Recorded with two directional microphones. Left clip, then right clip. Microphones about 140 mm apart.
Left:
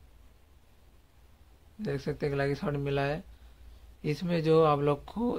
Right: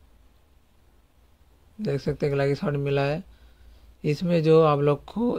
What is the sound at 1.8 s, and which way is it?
Speech, 35° right (ahead or behind).